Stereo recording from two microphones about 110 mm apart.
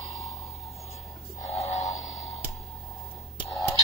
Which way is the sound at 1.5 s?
70° left (ahead or behind).